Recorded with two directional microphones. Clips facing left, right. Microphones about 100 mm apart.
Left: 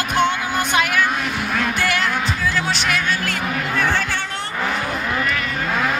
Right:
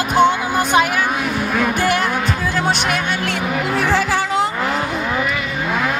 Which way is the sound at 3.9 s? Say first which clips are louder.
Right 5 dB; 90° right.